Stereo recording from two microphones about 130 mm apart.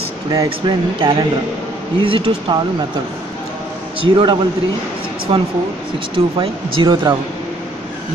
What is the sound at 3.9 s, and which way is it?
Speech, 40° right (ahead or behind).